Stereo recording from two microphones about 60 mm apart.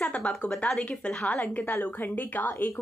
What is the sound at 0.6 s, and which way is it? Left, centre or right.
Speech, centre.